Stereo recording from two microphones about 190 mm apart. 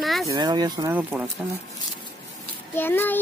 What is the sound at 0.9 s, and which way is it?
Speech, 5° right (ahead or behind).